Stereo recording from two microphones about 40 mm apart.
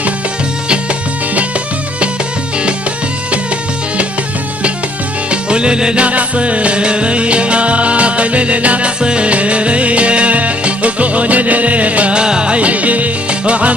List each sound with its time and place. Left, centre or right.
5.3 s music: right
6.0 s music: right
12.2 s music: right